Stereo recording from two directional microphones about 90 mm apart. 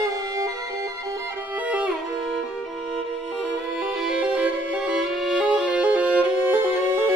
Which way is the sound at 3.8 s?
10° right (ahead or behind).